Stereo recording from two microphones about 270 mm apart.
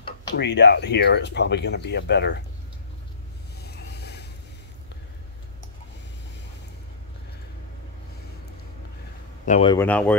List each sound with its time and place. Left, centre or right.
0.3 s speech: left
3.5 s a sound: left
9.5 s a man's voice: left
9.8 s speech: centre